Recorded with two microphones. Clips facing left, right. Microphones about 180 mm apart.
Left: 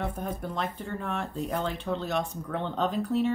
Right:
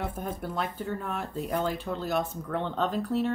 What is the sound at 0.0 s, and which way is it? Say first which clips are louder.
Speech: left 1 dB; 5° right (ahead or behind).